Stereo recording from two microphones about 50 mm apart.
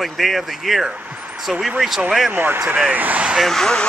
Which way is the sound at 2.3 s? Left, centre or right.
Right.